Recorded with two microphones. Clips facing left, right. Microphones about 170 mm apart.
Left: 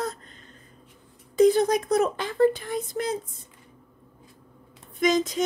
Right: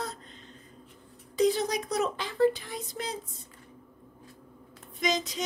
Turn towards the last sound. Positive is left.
turn(degrees=50)  # may be behind; listen again after turning